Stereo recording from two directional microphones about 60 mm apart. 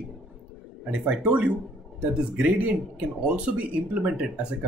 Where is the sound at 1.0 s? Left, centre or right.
Right.